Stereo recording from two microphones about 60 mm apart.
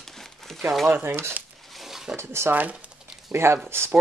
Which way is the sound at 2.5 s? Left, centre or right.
Right.